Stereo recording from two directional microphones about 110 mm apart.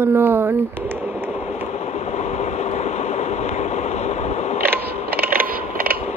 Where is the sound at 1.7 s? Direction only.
90° left.